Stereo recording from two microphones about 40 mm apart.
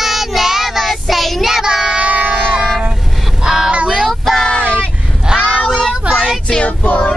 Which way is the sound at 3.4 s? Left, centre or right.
Centre.